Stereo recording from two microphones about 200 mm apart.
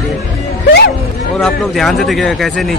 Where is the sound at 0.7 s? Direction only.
60° left (ahead or behind).